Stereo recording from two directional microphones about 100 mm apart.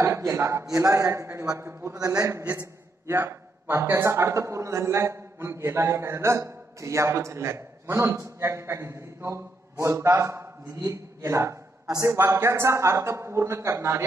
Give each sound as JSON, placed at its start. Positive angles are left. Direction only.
{"t": 0.0, "sound": "a man's voice", "side_deg": -30}
{"t": 2.0, "sound": "a man's voice", "side_deg": -35}